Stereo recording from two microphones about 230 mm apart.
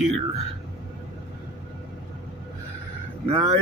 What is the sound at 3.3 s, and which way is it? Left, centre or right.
Speech, right.